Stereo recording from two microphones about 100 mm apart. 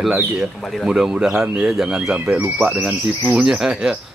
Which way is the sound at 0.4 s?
5° right (ahead or behind).